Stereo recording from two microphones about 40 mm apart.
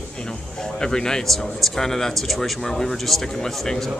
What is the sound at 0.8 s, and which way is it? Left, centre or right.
Speech, centre.